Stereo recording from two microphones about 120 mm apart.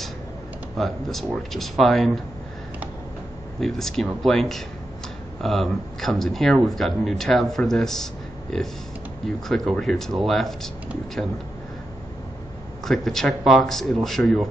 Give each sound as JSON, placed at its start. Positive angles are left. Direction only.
{"t": 0.7, "sound": "speech", "side_deg": 0}
{"t": 3.6, "sound": "speech", "side_deg": 5}
{"t": 12.8, "sound": "speech", "side_deg": 0}